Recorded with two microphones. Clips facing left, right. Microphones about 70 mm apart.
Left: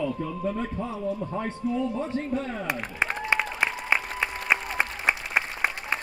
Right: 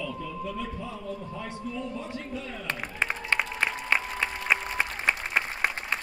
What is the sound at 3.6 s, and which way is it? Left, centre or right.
Applause, centre.